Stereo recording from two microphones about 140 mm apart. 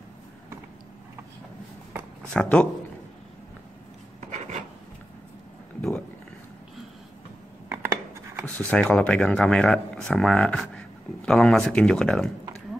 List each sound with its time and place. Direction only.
2.3 s speech: 5° left (ahead or behind)
4.3 s filing: 55° right (ahead or behind)
5.8 s a sound: 5° left (ahead or behind)
8.5 s speech: 10° left (ahead or behind)